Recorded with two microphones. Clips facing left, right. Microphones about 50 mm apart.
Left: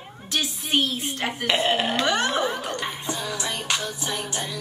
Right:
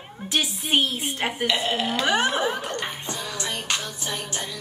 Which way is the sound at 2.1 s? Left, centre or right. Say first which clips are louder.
Right 1 dB; centre.